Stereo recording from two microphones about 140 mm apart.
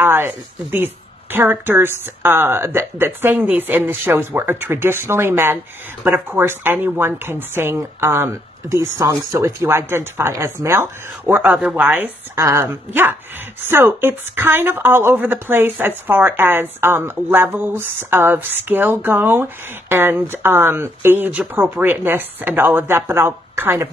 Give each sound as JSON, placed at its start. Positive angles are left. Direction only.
{"t": 0.0, "sound": "a woman's voice", "side_deg": -15}